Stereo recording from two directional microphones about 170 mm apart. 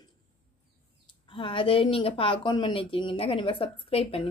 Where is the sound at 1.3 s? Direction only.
30° left (ahead or behind).